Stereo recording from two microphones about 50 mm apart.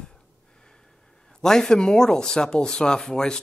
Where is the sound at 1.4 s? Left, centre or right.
Centre.